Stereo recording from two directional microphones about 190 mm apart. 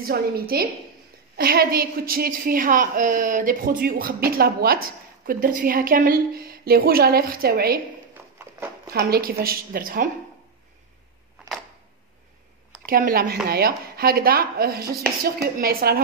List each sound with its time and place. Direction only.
0.0 s speech: 55° right (ahead or behind)
8.9 s speech: 55° right (ahead or behind)
12.8 s speech: 50° right (ahead or behind)